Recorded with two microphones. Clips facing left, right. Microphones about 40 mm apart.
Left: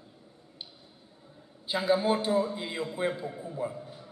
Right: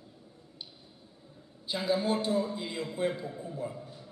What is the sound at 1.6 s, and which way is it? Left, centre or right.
A man's voice, centre.